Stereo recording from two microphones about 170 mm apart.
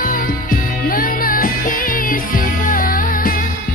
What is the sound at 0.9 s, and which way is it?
Music, 55° left (ahead or behind).